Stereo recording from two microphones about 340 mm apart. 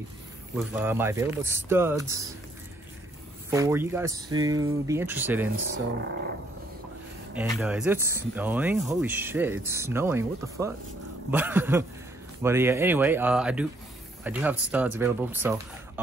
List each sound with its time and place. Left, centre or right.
0.6 s speech: centre
3.4 s speech: centre
7.6 s speech: centre